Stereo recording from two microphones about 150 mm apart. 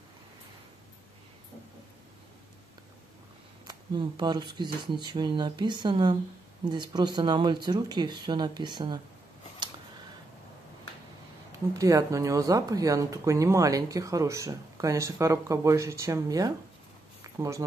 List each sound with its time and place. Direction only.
3.6 s speech: 30° right (ahead or behind)
11.7 s speech: 20° right (ahead or behind)
17.2 s a sound: 20° right (ahead or behind)